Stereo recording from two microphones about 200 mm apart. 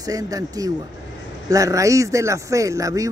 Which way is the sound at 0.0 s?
15° right (ahead or behind).